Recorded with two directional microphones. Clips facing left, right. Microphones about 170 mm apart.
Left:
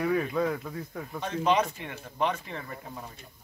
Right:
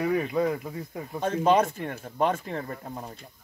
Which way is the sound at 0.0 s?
15° right (ahead or behind).